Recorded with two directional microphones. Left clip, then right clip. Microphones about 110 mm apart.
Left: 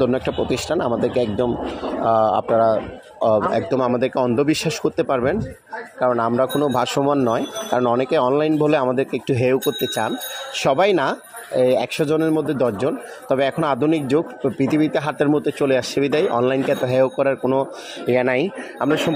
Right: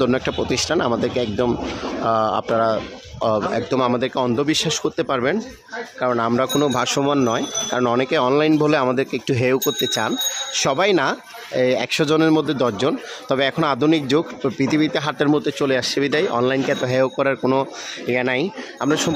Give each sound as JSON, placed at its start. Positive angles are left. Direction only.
{"t": 0.0, "sound": "a man's voice", "side_deg": -5}
{"t": 6.0, "sound": "speech", "side_deg": -15}
{"t": 6.7, "sound": "a man's voice", "side_deg": 0}
{"t": 12.0, "sound": "a man's voice", "side_deg": -15}
{"t": 17.4, "sound": "a man's voice", "side_deg": -20}
{"t": 18.2, "sound": "a man's voice", "side_deg": 5}